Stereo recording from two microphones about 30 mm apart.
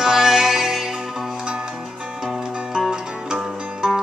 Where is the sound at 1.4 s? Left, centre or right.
Right.